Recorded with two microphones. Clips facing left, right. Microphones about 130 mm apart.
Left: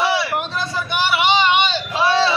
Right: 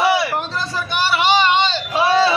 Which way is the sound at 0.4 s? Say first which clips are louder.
Even; 15° left (ahead or behind).